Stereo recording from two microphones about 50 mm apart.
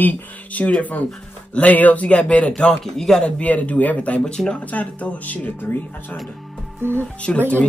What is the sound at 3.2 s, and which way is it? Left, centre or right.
Speech, left.